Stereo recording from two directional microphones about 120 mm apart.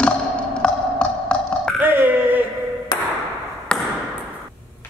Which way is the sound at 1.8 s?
15° right (ahead or behind).